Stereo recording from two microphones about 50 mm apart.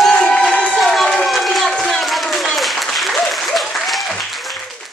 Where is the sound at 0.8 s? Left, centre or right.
Centre.